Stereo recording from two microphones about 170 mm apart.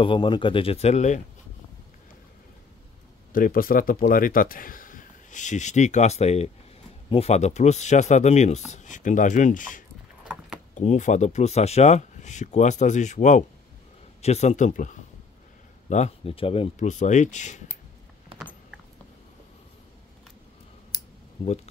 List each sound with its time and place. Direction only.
0.0 s speech: 30° left (ahead or behind)
3.3 s speech: 55° left (ahead or behind)
10.2 s keys jangling: 5° right (ahead or behind)
10.7 s speech: 45° left (ahead or behind)
18.3 s a sound: 30° right (ahead or behind)